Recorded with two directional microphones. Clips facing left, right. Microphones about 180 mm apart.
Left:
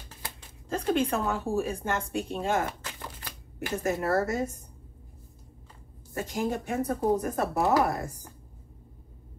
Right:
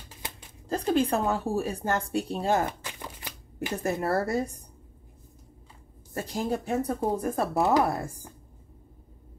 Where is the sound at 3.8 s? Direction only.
35° right (ahead or behind).